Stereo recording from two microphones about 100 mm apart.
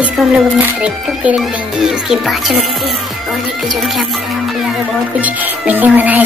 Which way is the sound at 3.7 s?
Centre (ahead or behind).